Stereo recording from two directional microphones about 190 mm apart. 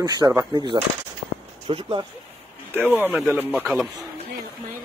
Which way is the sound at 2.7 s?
10° right (ahead or behind).